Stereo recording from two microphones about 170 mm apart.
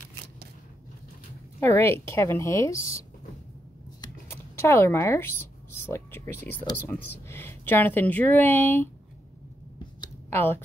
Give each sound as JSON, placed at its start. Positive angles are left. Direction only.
{"t": 1.6, "sound": "a woman's voice", "side_deg": 15}
{"t": 4.6, "sound": "a woman's voice", "side_deg": 15}
{"t": 10.3, "sound": "a woman's voice", "side_deg": 15}